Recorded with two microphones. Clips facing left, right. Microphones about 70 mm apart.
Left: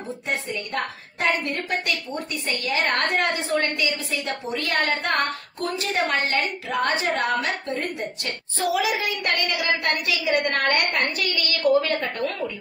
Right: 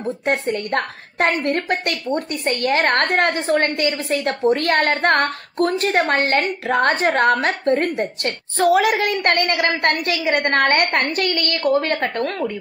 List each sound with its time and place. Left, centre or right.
0.3 s a woman's voice: right